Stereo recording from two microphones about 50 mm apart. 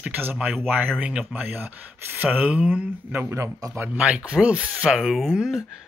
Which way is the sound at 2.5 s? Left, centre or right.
Right.